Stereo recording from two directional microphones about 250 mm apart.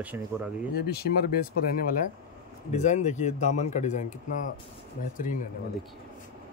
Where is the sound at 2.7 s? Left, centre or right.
Left.